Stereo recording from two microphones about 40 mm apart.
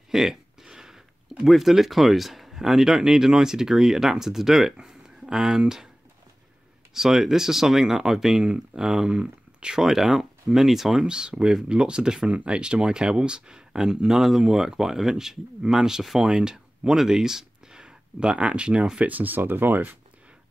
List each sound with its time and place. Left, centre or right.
0.1 s a sound: centre
1.4 s speech: centre
4.7 s a sound: centre
6.9 s speech: centre
9.8 s speech: centre
11.1 s speech: right
12.3 s speech: right
18.9 s speech: right